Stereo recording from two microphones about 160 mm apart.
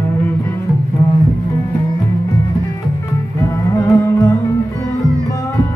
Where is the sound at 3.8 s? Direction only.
20° left (ahead or behind).